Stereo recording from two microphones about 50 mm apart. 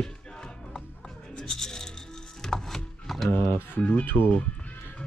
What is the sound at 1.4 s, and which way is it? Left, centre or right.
Coin, centre.